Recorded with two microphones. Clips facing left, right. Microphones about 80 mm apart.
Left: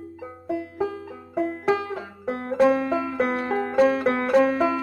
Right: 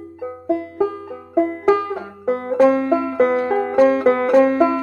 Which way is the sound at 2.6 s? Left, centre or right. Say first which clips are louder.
Right 5 dB; centre.